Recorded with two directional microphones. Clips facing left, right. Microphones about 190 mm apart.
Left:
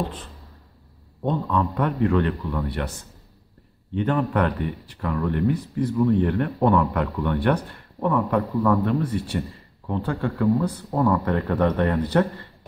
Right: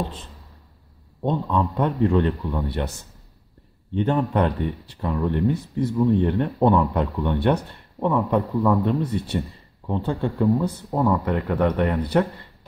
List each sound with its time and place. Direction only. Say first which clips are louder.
1.2 s speech: right 1 dB; 25° right (ahead or behind)
4.0 s a man's voice: right 1 dB; 25° right (ahead or behind)